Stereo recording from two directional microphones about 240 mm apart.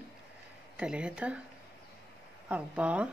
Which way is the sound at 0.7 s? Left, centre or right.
Centre.